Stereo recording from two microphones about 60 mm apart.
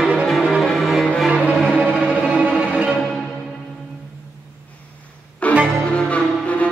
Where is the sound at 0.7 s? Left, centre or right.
Centre.